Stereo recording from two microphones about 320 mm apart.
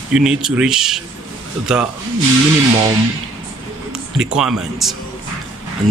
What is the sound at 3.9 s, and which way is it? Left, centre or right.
A man's voice, centre.